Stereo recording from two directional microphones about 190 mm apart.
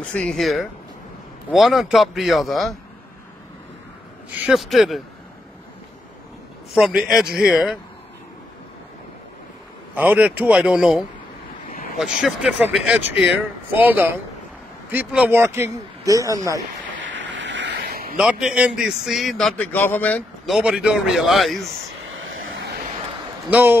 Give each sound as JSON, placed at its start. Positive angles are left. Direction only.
{"t": 0.1, "sound": "a man's voice", "side_deg": 5}
{"t": 4.5, "sound": "a man's voice", "side_deg": 0}
{"t": 6.7, "sound": "a man's voice", "side_deg": 0}
{"t": 9.9, "sound": "a man's voice", "side_deg": -10}
{"t": 17.0, "sound": "a sound", "side_deg": -70}
{"t": 18.1, "sound": "a man's voice", "side_deg": -5}
{"t": 23.5, "sound": "speech", "side_deg": -10}